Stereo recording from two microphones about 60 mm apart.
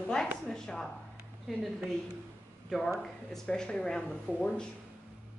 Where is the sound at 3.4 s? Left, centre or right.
Centre.